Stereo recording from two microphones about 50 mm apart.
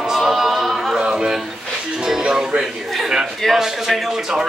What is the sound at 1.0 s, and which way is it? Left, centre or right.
Speech, centre.